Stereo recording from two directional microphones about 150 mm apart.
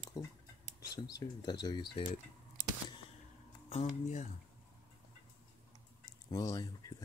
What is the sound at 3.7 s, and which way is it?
Speech, 50° left (ahead or behind).